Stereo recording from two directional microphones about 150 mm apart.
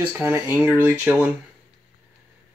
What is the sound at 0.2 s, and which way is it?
Speech, 15° right (ahead or behind).